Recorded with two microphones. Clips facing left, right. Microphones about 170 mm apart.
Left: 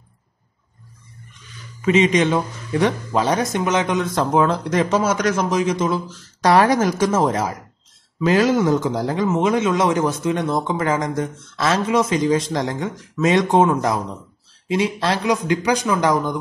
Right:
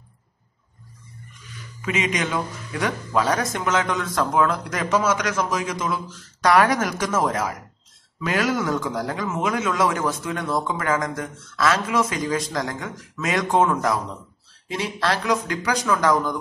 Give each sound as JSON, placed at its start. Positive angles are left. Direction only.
{"t": 1.8, "sound": "speech", "side_deg": 30}